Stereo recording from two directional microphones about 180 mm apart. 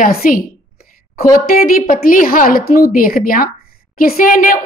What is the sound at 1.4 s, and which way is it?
A woman's voice, 55° left (ahead or behind).